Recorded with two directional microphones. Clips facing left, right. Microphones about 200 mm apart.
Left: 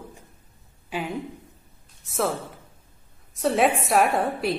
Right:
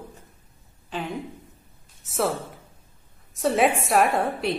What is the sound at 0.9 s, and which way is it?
Speech, 10° left (ahead or behind).